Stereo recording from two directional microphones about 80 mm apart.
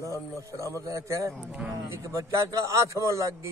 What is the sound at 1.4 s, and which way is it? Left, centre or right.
Speech, centre.